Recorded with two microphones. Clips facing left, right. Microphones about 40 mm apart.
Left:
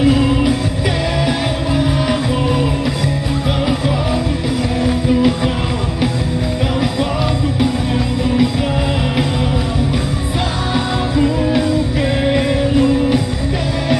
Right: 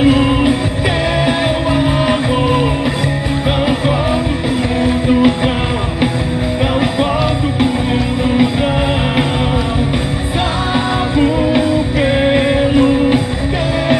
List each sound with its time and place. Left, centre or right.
0.0 s music: right
1.8 s music: right
4.8 s music: right
11.1 s music: right